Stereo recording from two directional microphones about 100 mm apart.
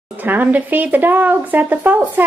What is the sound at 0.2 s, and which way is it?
Speech, 20° right (ahead or behind).